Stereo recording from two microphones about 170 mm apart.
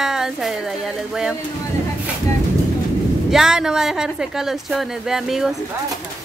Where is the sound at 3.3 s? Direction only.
5° right (ahead or behind).